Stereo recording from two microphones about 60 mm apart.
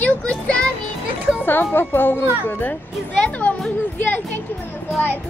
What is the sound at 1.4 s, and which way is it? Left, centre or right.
A child's voice, left.